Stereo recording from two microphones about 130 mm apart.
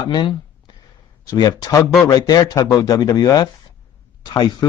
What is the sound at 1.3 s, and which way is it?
Speech, 30° left (ahead or behind).